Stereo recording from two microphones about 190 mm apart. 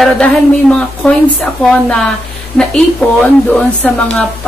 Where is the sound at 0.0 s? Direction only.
5° left (ahead or behind).